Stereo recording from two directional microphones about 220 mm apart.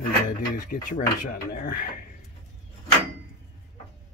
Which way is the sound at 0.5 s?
40° left (ahead or behind).